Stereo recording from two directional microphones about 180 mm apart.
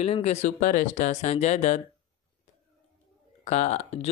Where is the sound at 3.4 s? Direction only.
40° left (ahead or behind).